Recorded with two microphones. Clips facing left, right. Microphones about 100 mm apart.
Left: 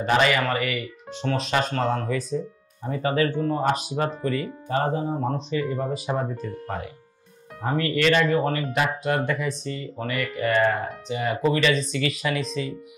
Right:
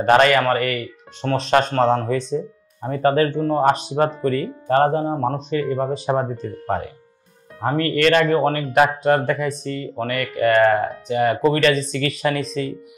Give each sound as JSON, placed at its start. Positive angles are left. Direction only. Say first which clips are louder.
{"t": 0.0, "sound": "speech", "louder": "right 6 dB", "side_deg": -55}
{"t": 2.8, "sound": "speech", "louder": "right 6 dB", "side_deg": -50}
{"t": 9.0, "sound": "speech", "louder": "right 6 dB", "side_deg": -40}